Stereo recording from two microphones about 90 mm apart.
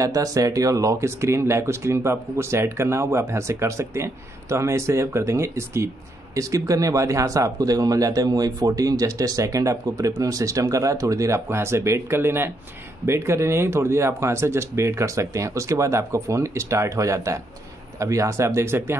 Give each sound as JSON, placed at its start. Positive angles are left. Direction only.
{"t": 0.0, "sound": "speech", "side_deg": -40}